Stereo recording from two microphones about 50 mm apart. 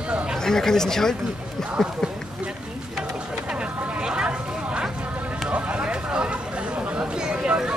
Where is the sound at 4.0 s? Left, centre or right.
Centre.